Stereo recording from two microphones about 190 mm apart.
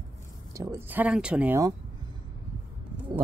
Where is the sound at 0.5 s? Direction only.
15° right (ahead or behind).